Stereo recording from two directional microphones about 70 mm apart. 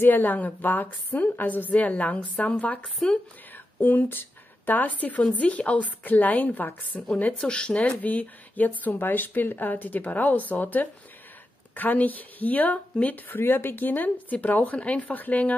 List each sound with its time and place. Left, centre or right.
0.0 s speech: left
2.8 s speech: centre
3.5 s speech: left